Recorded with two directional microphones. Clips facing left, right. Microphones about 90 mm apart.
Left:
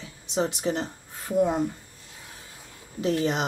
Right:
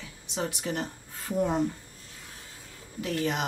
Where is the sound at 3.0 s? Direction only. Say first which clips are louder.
Left 5 dB; 25° left (ahead or behind).